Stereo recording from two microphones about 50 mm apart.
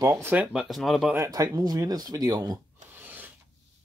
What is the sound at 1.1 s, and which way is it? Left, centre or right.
Speech, right.